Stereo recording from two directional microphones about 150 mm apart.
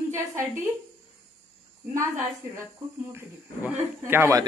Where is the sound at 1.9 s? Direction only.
20° right (ahead or behind).